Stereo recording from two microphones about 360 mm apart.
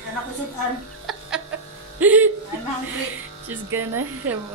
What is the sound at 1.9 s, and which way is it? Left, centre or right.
Speech, centre.